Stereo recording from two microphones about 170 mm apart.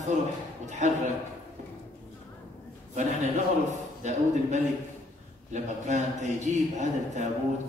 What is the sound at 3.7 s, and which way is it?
A man's voice, 45° right (ahead or behind).